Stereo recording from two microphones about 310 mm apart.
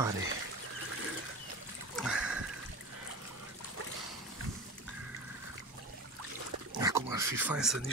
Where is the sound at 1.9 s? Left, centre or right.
Centre.